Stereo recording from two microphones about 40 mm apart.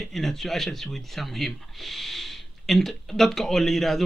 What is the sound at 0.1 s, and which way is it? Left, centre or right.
A man's voice, centre.